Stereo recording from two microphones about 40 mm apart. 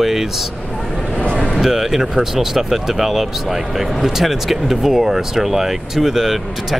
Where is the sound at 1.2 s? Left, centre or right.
Left.